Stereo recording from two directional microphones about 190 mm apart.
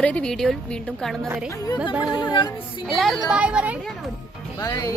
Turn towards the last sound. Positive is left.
turn(degrees=20)  # may be behind; listen again after turning